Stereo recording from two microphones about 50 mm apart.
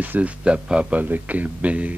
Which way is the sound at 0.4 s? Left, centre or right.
Centre.